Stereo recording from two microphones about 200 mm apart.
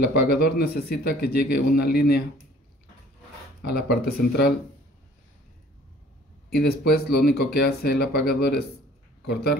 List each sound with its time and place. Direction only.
0.0 s speech: 55° left (ahead or behind)
3.6 s speech: 50° left (ahead or behind)
6.5 s speech: 50° left (ahead or behind)